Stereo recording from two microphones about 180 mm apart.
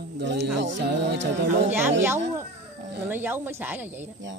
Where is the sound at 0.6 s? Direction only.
75° right (ahead or behind).